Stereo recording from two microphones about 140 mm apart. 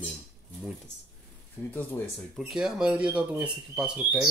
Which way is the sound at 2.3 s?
5° right (ahead or behind).